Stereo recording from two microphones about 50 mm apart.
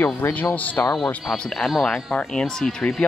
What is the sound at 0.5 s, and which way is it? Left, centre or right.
Speech, left.